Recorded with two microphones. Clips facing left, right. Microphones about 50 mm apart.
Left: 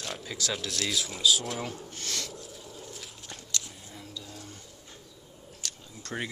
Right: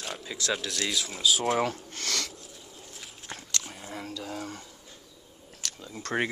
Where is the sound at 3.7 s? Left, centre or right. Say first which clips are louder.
Right 7 dB; right.